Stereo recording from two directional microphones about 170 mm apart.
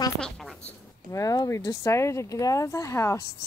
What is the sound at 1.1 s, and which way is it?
Speech, 20° left (ahead or behind).